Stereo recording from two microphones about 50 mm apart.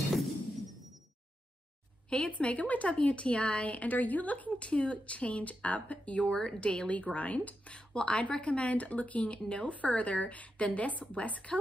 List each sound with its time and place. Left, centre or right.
2.0 s speech: left